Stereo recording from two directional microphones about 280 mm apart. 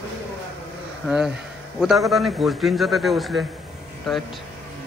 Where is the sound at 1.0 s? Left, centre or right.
Centre.